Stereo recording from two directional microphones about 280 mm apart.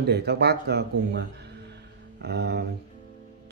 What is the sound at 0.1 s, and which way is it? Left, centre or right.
Speech, right.